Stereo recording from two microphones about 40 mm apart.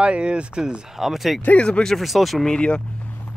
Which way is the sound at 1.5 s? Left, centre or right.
Left.